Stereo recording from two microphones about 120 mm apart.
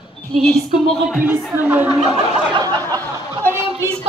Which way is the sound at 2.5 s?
40° right (ahead or behind).